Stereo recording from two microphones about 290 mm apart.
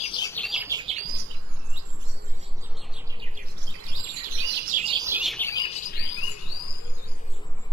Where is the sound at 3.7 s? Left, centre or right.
Right.